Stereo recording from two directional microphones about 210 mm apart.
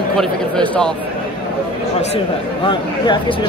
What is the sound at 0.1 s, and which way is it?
Speech, 5° left (ahead or behind).